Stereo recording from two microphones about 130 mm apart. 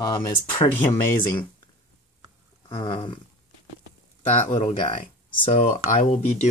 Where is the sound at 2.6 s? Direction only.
35° left (ahead or behind).